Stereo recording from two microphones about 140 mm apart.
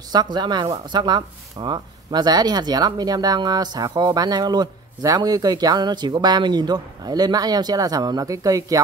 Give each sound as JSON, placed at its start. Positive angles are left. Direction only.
{"t": 0.1, "sound": "speech", "side_deg": -30}